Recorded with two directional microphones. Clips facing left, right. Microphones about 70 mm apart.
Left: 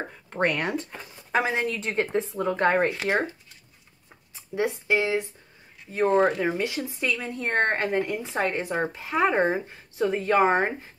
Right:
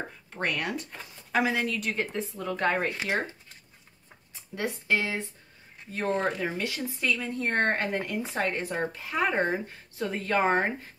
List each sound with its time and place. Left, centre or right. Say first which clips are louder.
0.3 s speech: left 6 dB; left
4.4 s speech: left 6 dB; left